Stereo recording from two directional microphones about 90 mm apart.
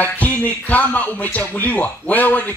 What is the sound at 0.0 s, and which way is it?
Speech, 20° left (ahead or behind).